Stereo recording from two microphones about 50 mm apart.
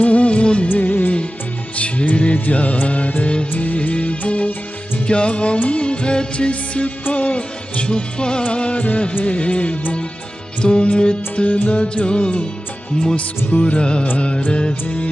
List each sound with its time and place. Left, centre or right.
0.0 s music of bollywood: left
0.7 s music of bollywood: left
1.8 s music: left
7.2 s music of bollywood: left
9.2 s music: left
11.5 s music: left
11.8 s music: left
13.5 s music: left
13.7 s music: left